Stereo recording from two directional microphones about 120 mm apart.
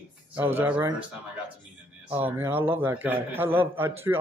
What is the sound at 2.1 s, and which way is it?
A man's voice, 15° right (ahead or behind).